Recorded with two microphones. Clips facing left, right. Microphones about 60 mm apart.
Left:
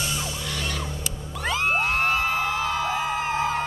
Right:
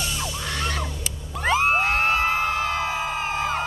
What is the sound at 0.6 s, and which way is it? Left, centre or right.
Neigh, right.